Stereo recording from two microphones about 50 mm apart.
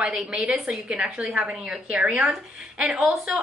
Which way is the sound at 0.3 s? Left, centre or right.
Centre.